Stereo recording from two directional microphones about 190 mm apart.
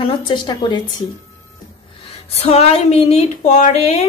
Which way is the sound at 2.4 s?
30° left (ahead or behind).